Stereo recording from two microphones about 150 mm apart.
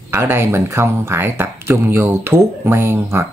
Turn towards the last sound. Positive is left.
turn(degrees=-15)  # may be behind; listen again after turning